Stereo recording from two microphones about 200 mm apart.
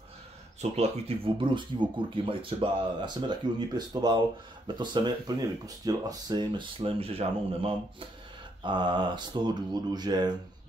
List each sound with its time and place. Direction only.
0.6 s speech: 30° right (ahead or behind)